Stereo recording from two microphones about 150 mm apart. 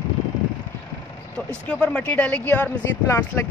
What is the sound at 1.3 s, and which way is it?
Speech, 5° left (ahead or behind).